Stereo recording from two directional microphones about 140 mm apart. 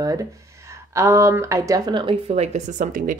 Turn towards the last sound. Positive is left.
turn(degrees=-65)  # may be behind; listen again after turning